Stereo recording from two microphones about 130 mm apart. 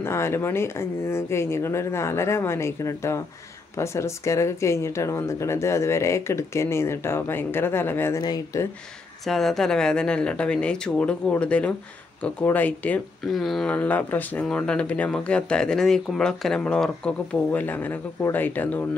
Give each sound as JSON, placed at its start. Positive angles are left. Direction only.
{"t": 0.0, "sound": "speech", "side_deg": 20}
{"t": 8.2, "sound": "speech", "side_deg": 30}
{"t": 9.2, "sound": "speech", "side_deg": 0}